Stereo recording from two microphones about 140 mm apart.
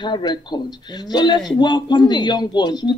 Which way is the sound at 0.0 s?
30° left (ahead or behind).